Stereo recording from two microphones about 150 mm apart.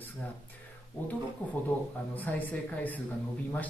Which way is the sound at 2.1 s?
10° left (ahead or behind).